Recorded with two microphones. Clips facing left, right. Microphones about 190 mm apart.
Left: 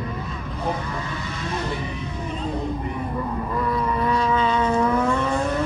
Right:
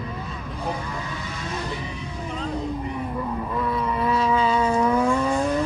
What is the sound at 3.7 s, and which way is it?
Vehicle, 5° right (ahead or behind).